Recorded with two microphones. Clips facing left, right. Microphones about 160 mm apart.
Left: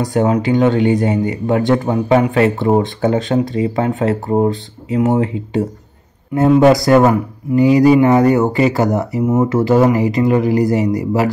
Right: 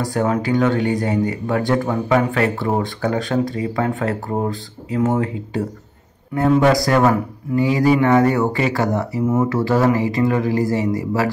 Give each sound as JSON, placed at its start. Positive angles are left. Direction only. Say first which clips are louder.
{"t": 0.0, "sound": "speech", "louder": "left 5 dB", "side_deg": 20}